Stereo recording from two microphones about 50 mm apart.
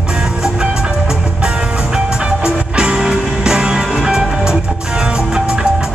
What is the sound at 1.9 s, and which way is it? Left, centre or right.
Music, centre.